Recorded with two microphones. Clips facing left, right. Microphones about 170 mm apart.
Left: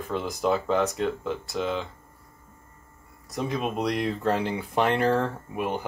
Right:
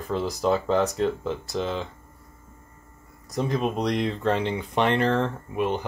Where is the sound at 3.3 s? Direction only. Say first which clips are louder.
Right 3 dB; centre (ahead or behind).